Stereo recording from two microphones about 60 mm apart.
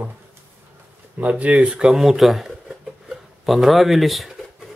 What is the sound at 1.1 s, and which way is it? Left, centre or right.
Speech, right.